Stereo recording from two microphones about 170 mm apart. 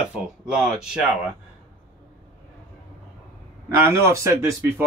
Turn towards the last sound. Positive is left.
turn(degrees=-15)  # may be behind; listen again after turning